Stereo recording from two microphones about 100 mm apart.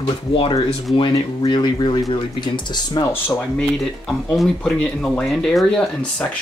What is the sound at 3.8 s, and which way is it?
Speech, centre (ahead or behind).